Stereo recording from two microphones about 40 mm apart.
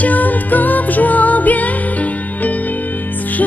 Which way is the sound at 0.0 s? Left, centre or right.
Left.